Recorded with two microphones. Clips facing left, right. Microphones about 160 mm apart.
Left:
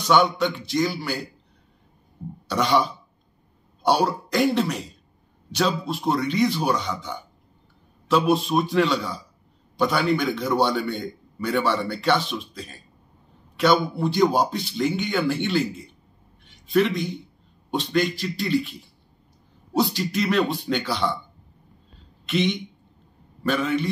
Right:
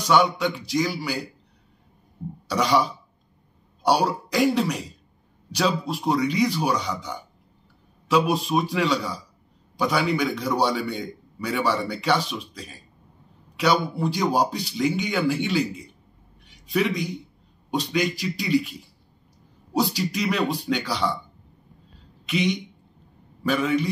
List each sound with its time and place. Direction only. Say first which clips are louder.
0.0 s a man's voice: left 1 dB; 5° right (ahead or behind)
2.5 s a man's voice: even; 5° right (ahead or behind)
18.2 s a man's voice: right 1 dB; 5° right (ahead or behind)
19.8 s speech: left 1 dB; 5° right (ahead or behind)
22.3 s a man's voice: left 1 dB; 10° right (ahead or behind)